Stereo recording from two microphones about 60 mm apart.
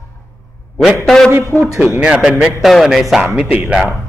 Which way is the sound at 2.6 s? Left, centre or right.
Centre.